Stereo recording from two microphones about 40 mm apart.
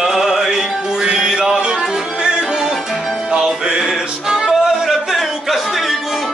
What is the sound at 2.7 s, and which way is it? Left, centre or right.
Music, centre.